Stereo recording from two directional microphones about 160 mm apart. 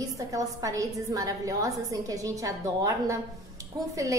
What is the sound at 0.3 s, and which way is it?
A woman's voice, 20° right (ahead or behind).